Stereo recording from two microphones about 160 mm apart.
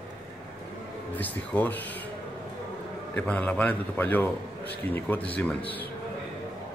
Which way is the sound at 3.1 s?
10° left (ahead or behind).